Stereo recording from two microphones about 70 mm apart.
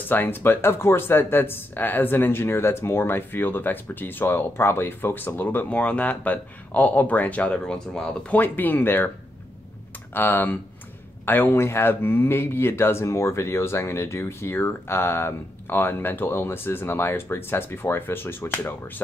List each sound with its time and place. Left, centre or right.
0.1 s speech: left
7.7 s speech: centre
8.3 s speech: left
10.1 s speech: left